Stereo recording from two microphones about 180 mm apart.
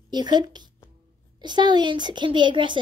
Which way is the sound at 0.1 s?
25° right (ahead or behind).